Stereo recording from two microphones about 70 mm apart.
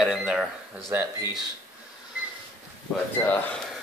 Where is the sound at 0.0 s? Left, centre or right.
Centre.